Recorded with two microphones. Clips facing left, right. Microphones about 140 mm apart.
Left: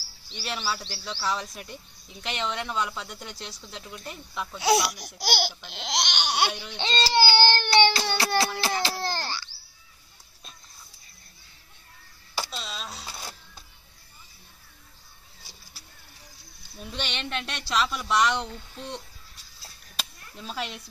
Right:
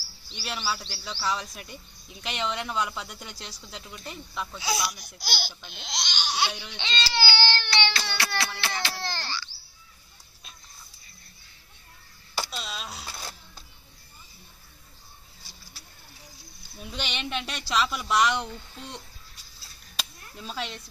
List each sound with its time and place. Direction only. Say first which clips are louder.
0.3 s speech: left 1 dB; 5° right (ahead or behind)
4.6 s speech: left 8 dB; 70° left (ahead or behind)
5.7 s speech: left 6 dB; 80° left; by 6.5 s 60° left (ahead or behind)
6.8 s baby cry: left 6 dB; 40° left (ahead or behind)
8.2 s a sound: left 5 dB; 35° left (ahead or behind)
12.4 s a sound: even; centre (ahead or behind)
13.0 s cash register: even; 5° left (ahead or behind)
16.8 s speech: even; 5° right (ahead or behind)
20.0 s chop: even; centre (ahead or behind)